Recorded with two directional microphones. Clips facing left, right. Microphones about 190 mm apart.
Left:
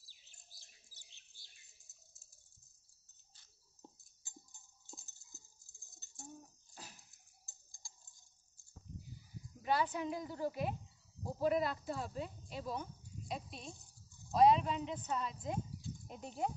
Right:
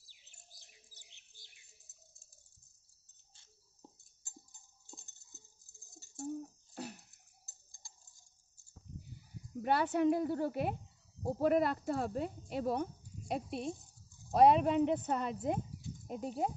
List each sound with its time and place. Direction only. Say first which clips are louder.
0.1 s bird: right 4 dB; 15° right (ahead or behind)
6.7 s bathtub: right 12 dB; 65° right (ahead or behind)
7.4 s tick-tock: even; centre (ahead or behind)
9.6 s speech: right 5 dB; 60° right (ahead or behind)
16.1 s speech: right 4 dB; 40° right (ahead or behind)